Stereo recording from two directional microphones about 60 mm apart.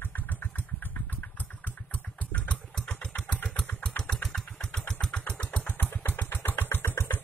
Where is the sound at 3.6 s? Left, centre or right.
Centre; by 7.2 s left.